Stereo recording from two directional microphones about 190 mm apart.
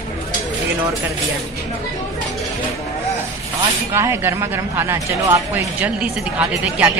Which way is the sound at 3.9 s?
15° right (ahead or behind).